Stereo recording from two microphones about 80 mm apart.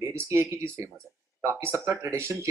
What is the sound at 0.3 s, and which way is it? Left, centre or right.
Speech, right.